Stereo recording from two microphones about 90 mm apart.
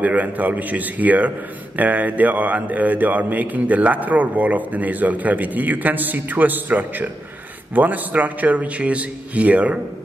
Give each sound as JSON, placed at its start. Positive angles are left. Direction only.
{"t": 0.0, "sound": "a man's voice", "side_deg": -15}